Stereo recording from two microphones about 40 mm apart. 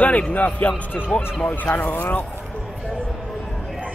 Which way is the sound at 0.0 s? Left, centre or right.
Left.